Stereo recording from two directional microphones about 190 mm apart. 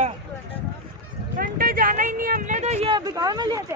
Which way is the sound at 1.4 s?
50° right (ahead or behind).